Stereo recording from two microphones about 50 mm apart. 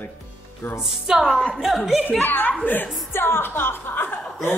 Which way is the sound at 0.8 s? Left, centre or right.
Centre.